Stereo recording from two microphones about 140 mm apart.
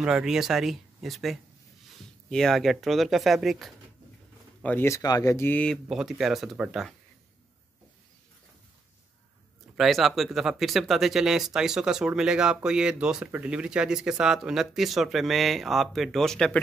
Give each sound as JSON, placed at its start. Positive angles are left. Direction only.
{"t": 0.0, "sound": "speech", "side_deg": -5}
{"t": 4.6, "sound": "speech", "side_deg": 20}
{"t": 5.9, "sound": "speech", "side_deg": -5}
{"t": 9.8, "sound": "speech", "side_deg": 0}